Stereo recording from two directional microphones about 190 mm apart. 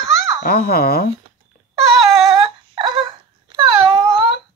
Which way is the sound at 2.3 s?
30° right (ahead or behind).